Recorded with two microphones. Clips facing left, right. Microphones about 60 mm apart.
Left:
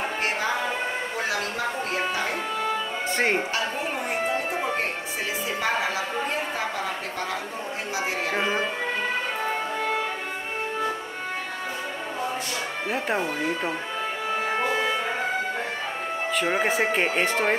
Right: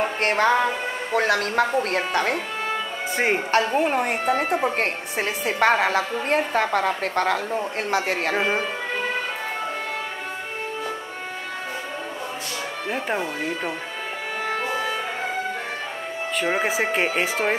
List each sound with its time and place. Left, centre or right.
0.2 s music: right
1.1 s a woman's voice: right
3.2 s speech: centre
3.5 s a woman's voice: right
12.9 s speech: centre
16.3 s speech: centre